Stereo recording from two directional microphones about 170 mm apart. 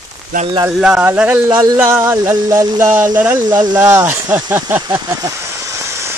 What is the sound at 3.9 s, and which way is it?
Speech, 10° right (ahead or behind).